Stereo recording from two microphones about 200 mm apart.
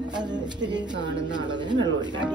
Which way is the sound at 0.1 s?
20° right (ahead or behind).